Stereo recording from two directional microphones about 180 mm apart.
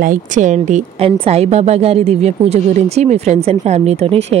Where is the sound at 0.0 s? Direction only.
45° right (ahead or behind).